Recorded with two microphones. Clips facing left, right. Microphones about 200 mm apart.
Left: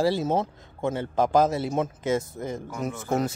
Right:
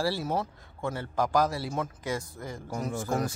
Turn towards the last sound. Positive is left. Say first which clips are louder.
# left 3 dB
turn(degrees=20)  # may be behind; listen again after turning